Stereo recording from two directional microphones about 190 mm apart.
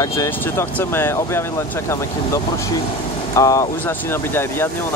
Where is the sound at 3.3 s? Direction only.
15° left (ahead or behind).